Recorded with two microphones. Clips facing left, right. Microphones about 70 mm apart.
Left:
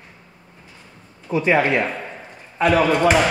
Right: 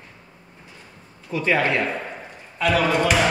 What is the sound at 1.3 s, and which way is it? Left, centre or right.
Speech, centre.